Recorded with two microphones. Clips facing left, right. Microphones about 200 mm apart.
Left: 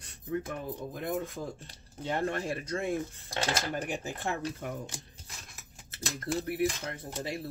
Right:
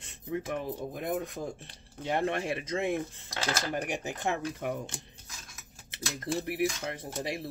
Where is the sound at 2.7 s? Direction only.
80° right.